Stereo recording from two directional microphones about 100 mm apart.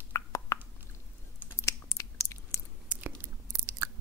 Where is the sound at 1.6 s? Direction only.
30° left (ahead or behind).